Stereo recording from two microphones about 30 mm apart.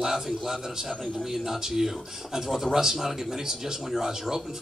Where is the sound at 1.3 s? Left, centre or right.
Centre.